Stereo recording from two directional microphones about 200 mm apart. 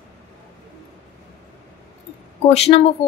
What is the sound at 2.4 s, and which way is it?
Speech, 30° left (ahead or behind).